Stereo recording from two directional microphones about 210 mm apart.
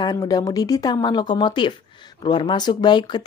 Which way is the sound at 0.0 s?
20° left (ahead or behind).